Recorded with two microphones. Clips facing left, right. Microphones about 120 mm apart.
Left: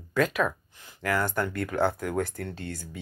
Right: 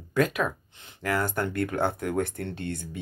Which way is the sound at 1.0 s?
25° right (ahead or behind).